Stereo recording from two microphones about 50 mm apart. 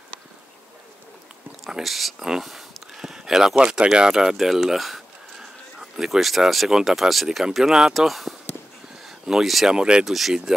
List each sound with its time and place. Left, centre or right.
1.7 s speech: centre
9.0 s a sound: centre
9.7 s speech: centre
10.0 s speech: centre